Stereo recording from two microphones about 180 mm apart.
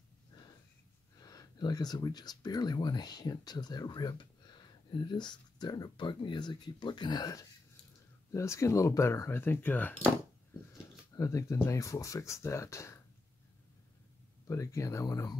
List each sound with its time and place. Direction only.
1.1 s speech: 20° left (ahead or behind)
11.1 s speech: 15° left (ahead or behind)
14.5 s speech: 15° left (ahead or behind)